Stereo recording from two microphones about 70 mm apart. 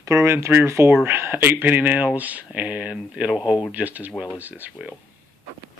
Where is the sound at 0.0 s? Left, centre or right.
Right.